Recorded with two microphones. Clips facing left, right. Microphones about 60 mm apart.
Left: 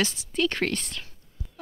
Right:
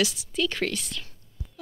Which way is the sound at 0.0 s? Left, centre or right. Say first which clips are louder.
Even; left.